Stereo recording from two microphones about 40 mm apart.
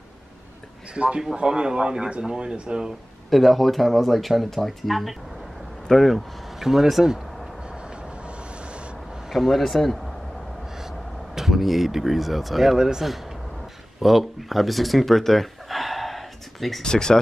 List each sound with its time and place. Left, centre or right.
0.9 s speech: right
3.3 s speech: centre
9.3 s a man's voice: centre
9.6 s speech: centre
11.3 s speech: centre
14.0 s chuckle: centre
16.8 s speech: centre